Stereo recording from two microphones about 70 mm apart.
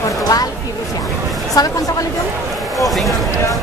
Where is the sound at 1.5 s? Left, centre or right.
Left.